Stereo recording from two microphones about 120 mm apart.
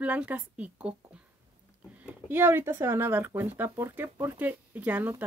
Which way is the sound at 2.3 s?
20° right (ahead or behind).